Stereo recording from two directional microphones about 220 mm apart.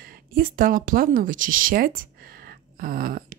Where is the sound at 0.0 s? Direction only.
40° right (ahead or behind).